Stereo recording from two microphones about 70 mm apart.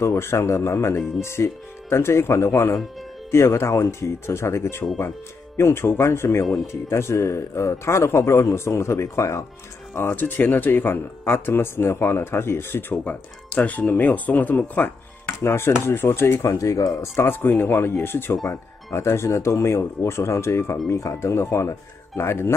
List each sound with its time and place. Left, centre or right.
0.0 s speech: left
9.9 s speech: left
13.6 s speech: left
15.4 s speech: left
16.4 s speech: left